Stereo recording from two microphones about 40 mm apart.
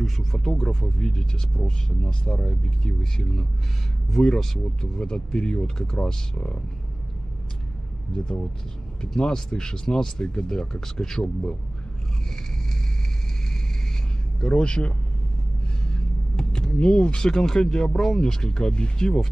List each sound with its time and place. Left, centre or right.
0.3 s speech: centre
3.0 s speech: centre
4.9 s speech: centre
6.3 s speech: left
8.2 s speech: left
9.0 s speech: centre
14.5 s speech: left